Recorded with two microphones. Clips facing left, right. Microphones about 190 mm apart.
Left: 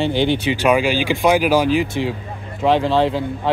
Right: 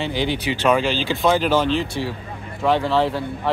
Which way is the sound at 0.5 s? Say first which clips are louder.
Right 1 dB; 10° left (ahead or behind).